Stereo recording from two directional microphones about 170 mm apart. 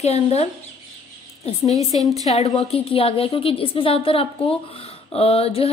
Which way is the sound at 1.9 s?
35° left (ahead or behind).